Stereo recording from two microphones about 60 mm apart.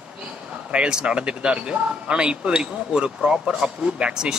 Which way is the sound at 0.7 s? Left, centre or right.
Centre.